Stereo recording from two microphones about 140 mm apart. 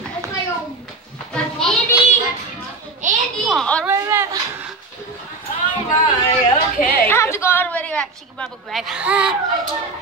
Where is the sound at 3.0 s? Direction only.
60° right (ahead or behind).